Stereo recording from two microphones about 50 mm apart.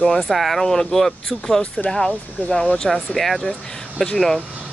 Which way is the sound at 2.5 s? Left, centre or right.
Centre.